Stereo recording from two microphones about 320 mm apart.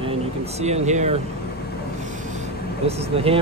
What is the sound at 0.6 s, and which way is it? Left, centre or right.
Speech, centre.